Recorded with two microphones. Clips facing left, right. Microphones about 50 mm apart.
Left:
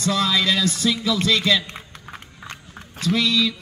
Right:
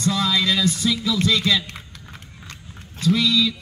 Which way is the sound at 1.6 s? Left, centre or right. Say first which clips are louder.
Left 1 dB; left.